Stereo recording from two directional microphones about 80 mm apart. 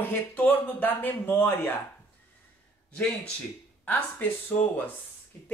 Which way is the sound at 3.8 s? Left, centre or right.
Left.